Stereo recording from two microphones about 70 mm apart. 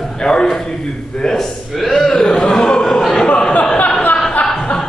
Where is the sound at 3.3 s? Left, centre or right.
Centre.